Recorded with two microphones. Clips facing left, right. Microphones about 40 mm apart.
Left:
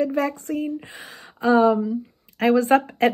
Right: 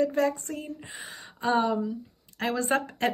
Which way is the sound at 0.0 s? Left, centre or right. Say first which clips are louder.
Left 2 dB; left.